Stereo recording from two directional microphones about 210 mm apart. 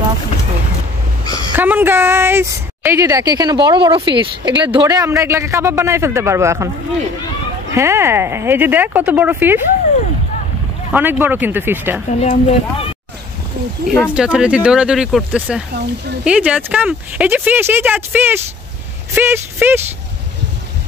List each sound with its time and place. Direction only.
1.5 s a woman's voice: 10° right (ahead or behind)
7.7 s a woman's voice: 15° right (ahead or behind)
10.9 s a woman's voice: 10° right (ahead or behind)
12.1 s speech: 35° left (ahead or behind)
13.8 s speech: centre (ahead or behind)
15.7 s speech: 50° right (ahead or behind)
16.3 s a woman's voice: 5° right (ahead or behind)